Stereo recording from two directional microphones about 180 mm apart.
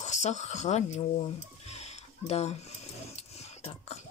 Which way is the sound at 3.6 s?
35° left (ahead or behind).